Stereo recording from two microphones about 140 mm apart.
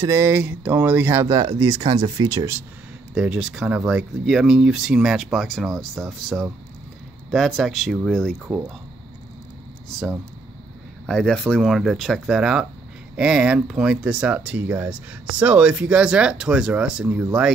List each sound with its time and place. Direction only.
0.0 s speech: 20° right (ahead or behind)
3.2 s speech: 5° right (ahead or behind)
8.5 s speech: 10° right (ahead or behind)
11.1 s speech: 5° left (ahead or behind)